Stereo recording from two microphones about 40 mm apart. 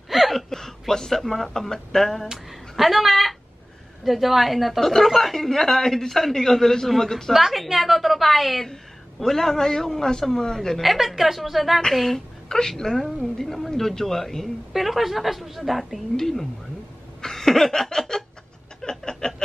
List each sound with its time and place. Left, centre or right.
0.1 s speech: centre
2.3 s a woman's voice: centre
7.3 s a woman's voice: centre
9.2 s a man's voice: centre
10.8 s a woman's voice: centre
12.4 s a man's voice: centre
16.2 s a man's voice: centre
17.2 s laughter: centre
18.8 s chuckle: centre